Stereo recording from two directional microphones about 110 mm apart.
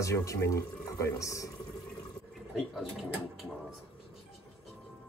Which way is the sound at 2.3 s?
Centre (ahead or behind).